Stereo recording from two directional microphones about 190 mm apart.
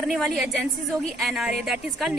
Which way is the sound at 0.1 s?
Centre (ahead or behind).